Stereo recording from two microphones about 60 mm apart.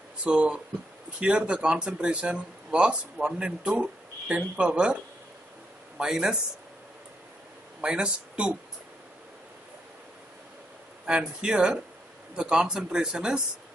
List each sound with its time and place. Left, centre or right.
0.2 s speech: centre
5.9 s speech: centre
7.8 s speech: centre
11.1 s speech: centre